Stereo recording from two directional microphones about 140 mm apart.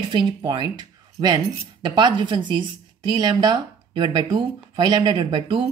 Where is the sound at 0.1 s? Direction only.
35° right (ahead or behind).